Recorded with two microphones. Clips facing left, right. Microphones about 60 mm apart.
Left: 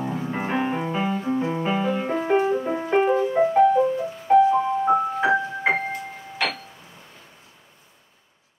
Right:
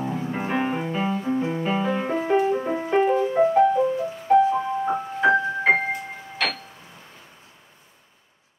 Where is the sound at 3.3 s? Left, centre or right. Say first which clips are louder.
Left 1 dB; centre.